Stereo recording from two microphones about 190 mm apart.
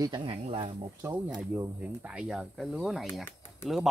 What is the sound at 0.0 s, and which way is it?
Speech, 25° right (ahead or behind).